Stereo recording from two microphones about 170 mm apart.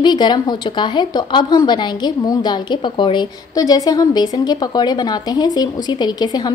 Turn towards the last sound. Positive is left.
turn(degrees=25)  # may be behind; listen again after turning